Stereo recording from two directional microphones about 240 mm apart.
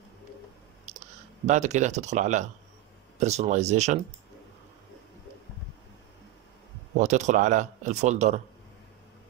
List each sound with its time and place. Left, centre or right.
0.9 s clicking: right
1.4 s a man's voice: right
7.0 s a man's voice: right